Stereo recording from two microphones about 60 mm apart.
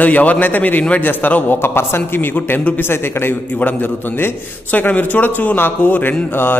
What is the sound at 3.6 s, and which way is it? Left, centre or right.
A man's voice, left.